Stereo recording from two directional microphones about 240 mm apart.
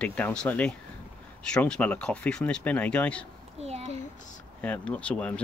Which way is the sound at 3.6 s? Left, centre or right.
Right.